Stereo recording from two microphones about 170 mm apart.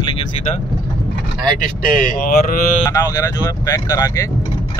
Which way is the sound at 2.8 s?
20° left (ahead or behind).